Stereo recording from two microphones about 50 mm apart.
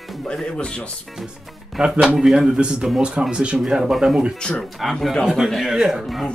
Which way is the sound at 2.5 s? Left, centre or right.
Centre.